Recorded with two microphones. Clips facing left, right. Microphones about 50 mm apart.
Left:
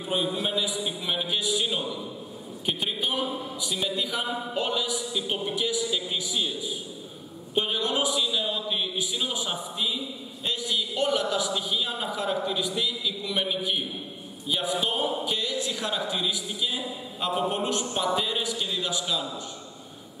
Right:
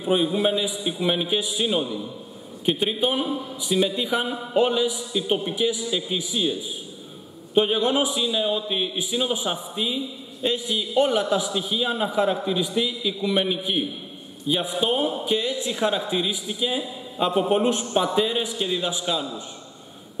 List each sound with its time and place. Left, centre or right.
0.0 s a man's voice: centre
7.5 s a man's voice: right
14.8 s a man's voice: centre